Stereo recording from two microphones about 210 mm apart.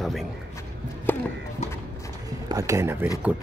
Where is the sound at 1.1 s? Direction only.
10° left (ahead or behind).